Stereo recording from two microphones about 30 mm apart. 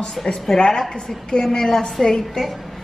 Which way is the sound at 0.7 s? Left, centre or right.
Left.